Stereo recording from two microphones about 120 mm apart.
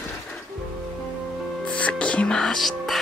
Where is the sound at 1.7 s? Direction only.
10° left (ahead or behind).